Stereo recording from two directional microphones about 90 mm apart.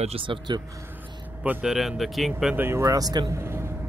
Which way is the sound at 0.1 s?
70° right (ahead or behind).